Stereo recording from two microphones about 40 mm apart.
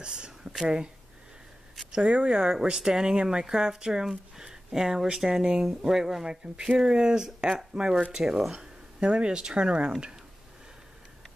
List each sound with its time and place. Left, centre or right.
0.0 s a sound: right
0.6 s speech: centre
1.9 s speech: right; by 6.2 s centre
6.2 s speech: right
8.5 s speech: right